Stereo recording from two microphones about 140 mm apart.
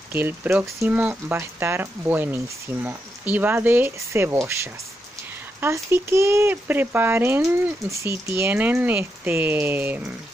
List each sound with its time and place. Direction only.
0.1 s speech: 15° right (ahead or behind)
5.6 s speech: 20° right (ahead or behind)